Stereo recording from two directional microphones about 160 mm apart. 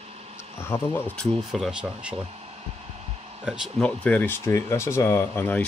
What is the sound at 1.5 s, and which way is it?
Speech, 5° right (ahead or behind).